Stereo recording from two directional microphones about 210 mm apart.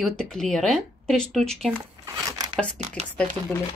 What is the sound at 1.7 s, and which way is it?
Crumpling, 15° right (ahead or behind).